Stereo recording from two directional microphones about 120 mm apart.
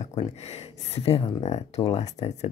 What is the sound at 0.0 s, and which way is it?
Speech, 65° left (ahead or behind).